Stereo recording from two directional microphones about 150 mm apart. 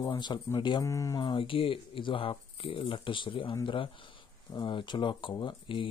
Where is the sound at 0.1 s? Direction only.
30° left (ahead or behind).